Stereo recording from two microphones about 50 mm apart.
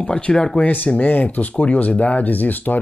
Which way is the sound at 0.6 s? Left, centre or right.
Left.